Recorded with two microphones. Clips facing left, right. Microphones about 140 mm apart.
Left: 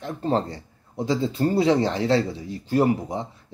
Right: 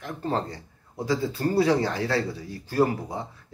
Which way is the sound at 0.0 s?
30° left (ahead or behind).